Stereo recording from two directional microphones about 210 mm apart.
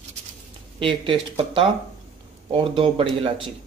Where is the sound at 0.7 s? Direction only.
25° right (ahead or behind).